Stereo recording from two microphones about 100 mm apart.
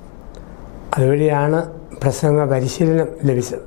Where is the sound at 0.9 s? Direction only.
15° left (ahead or behind).